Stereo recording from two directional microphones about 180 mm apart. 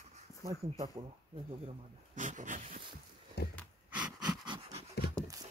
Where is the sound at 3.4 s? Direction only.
65° left (ahead or behind).